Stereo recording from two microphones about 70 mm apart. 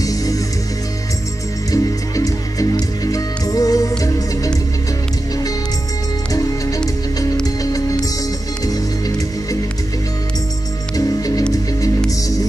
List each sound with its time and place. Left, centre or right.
0.0 s music: left
1.7 s music: left
7.4 s music: left
11.0 s music: left